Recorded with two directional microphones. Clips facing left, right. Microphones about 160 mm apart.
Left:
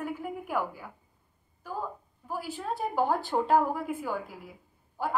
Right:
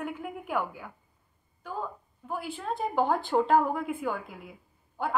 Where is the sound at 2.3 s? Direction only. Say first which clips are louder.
Right 1 dB; 5° left (ahead or behind).